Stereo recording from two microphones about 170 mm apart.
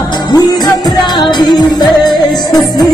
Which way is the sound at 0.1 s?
25° left (ahead or behind).